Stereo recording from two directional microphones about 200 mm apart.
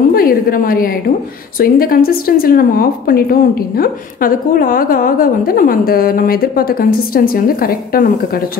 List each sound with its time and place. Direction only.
0.1 s a woman's voice: 45° left (ahead or behind)